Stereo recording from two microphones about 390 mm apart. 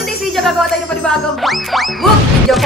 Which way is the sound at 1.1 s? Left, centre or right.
Centre.